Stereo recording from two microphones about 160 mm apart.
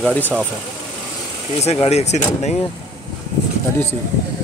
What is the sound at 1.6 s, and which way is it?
Speech, 40° left (ahead or behind).